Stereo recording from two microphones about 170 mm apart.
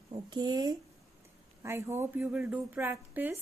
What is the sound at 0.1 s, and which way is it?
A woman's voice, 25° right (ahead or behind).